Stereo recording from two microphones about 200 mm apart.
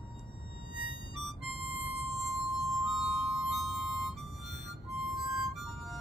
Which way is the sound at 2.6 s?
Centre (ahead or behind).